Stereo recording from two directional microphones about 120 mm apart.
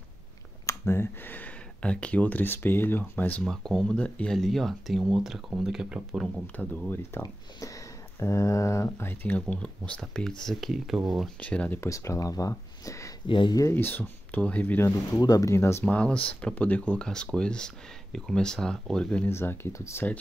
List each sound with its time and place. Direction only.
0.7 s speech: 20° left (ahead or behind); by 6.2 s 5° right (ahead or behind)
6.4 s speech: 15° left (ahead or behind); by 11.2 s centre (ahead or behind)
11.3 s speech: 10° left (ahead or behind)
11.8 s speech: 25° left (ahead or behind)
13.3 s speech: 40° left (ahead or behind)
13.6 s speech: 20° left (ahead or behind)
15.1 s speech: 30° left (ahead or behind); by 19.2 s 5° left (ahead or behind)
19.2 s speech: 20° left (ahead or behind)